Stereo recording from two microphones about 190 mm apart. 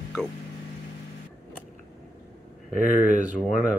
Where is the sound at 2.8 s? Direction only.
40° right (ahead or behind).